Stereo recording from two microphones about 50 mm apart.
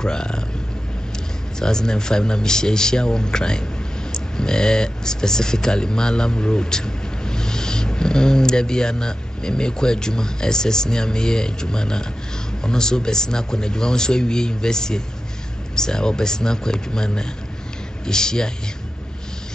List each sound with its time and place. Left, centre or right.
0.0 s a man's voice: centre
1.6 s a man's voice: centre